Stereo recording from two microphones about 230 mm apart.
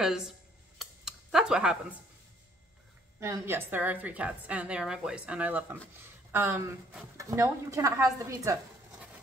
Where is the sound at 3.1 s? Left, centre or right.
Centre.